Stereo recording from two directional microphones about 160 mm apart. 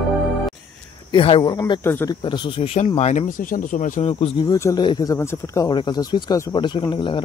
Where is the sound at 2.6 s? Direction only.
40° left (ahead or behind).